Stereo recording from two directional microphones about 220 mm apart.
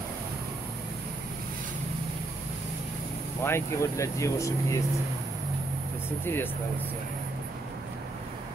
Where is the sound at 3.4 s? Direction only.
10° left (ahead or behind).